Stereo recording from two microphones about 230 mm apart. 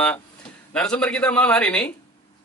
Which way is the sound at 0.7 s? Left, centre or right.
Centre.